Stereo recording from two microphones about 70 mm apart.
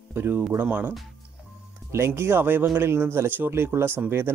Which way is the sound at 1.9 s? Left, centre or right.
Right.